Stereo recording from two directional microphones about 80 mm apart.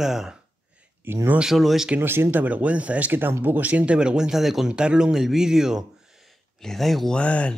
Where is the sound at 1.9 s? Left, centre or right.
Right; by 7.6 s centre.